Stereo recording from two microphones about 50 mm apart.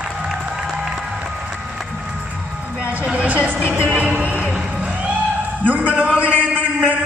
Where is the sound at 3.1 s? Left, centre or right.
Right.